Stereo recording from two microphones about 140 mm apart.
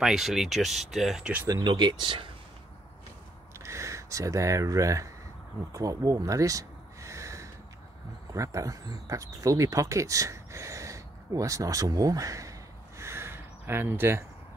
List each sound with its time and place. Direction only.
0.0 s speech: 5° right (ahead or behind)
1.5 s speech: 30° right (ahead or behind)
3.5 s speech: 20° right (ahead or behind)
5.7 s a sound: 25° right (ahead or behind)
8.3 s speech: 25° right (ahead or behind)